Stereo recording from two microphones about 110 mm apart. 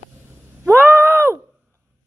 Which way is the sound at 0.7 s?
20° right (ahead or behind).